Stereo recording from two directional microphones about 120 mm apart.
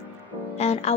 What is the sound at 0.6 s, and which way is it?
Speech, 60° left (ahead or behind).